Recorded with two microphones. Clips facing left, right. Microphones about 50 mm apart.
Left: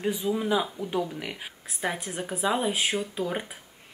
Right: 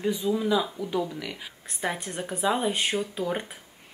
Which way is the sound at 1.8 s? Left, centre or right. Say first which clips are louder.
Even; centre.